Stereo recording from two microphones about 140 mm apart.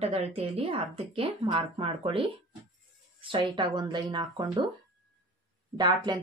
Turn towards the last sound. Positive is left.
turn(degrees=-30)  # may be behind; listen again after turning